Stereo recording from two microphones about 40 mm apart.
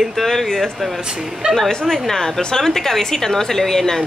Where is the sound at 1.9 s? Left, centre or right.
Centre.